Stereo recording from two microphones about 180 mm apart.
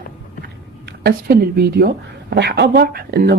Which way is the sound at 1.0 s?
60° right (ahead or behind).